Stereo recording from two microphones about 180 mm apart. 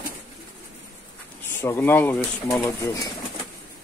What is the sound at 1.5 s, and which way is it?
Speech, 15° left (ahead or behind).